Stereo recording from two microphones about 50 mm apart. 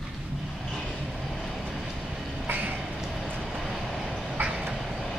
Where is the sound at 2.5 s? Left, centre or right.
Right.